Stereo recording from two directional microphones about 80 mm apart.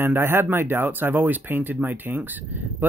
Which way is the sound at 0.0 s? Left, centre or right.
Right.